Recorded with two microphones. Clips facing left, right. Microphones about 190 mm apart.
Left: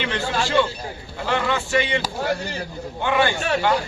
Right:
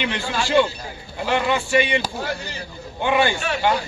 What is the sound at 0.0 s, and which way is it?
A man's voice, 15° right (ahead or behind).